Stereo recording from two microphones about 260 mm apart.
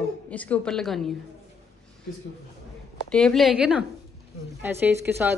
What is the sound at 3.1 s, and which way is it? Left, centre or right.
A woman's voice, centre.